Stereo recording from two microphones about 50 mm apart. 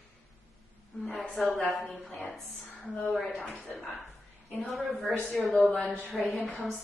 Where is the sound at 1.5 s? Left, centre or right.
Left.